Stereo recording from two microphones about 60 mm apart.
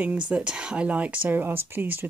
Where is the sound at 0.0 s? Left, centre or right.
Right.